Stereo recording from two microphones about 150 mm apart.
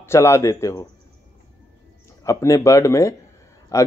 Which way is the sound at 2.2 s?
20° left (ahead or behind).